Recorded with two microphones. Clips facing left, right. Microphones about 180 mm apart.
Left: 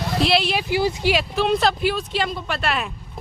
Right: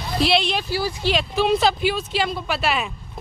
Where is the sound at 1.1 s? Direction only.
Centre (ahead or behind).